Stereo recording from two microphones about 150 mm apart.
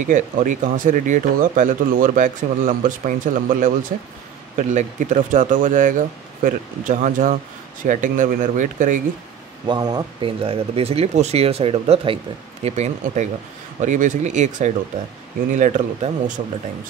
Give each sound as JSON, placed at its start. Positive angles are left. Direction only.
{"t": 0.0, "sound": "speech", "side_deg": -60}
{"t": 9.7, "sound": "speech", "side_deg": -25}
{"t": 12.6, "sound": "speech", "side_deg": -50}